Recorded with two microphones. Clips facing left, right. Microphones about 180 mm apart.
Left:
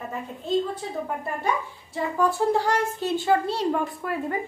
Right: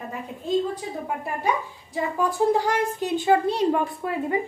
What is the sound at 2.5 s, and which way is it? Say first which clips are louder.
A woman's voice: right 1 dB; 15° right (ahead or behind).